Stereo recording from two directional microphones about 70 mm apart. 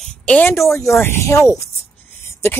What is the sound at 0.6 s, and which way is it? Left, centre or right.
Speech, left.